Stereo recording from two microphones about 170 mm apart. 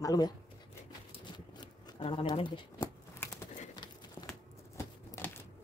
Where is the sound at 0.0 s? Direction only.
20° left (ahead or behind).